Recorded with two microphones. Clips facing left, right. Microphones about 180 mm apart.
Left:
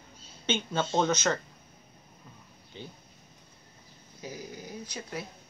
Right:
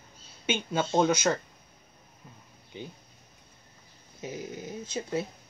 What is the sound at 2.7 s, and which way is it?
Speech, 15° right (ahead or behind).